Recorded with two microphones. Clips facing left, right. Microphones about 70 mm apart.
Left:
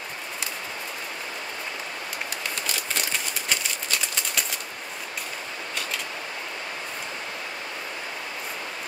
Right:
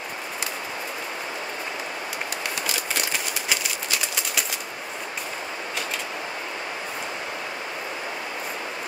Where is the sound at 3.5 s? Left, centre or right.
Centre.